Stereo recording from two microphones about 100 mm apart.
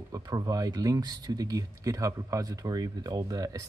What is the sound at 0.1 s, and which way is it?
Speech, 40° right (ahead or behind).